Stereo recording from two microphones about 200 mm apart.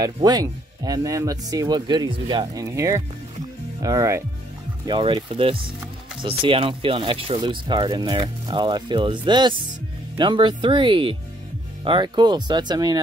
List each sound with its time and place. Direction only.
0.0 s speech: 20° right (ahead or behind)